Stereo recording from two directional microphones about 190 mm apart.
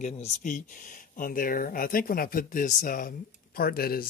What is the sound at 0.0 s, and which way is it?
Speech, 40° left (ahead or behind).